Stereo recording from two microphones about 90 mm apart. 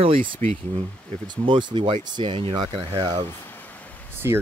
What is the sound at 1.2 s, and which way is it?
Speech, 60° right (ahead or behind).